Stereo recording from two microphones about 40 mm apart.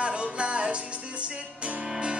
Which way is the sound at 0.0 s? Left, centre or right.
Right.